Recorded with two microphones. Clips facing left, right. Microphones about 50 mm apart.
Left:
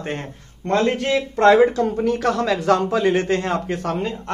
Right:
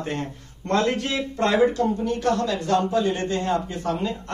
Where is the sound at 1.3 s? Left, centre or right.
Left.